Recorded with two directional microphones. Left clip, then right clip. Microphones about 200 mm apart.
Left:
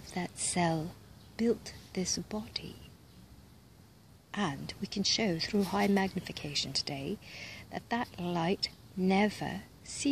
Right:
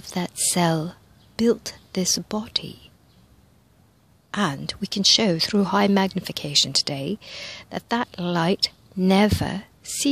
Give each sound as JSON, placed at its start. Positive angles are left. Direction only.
{"t": 0.0, "sound": "a woman's voice", "side_deg": -45}
{"t": 4.3, "sound": "speech", "side_deg": -45}